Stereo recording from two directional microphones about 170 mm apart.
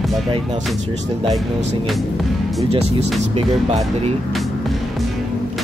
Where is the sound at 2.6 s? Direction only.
35° right (ahead or behind).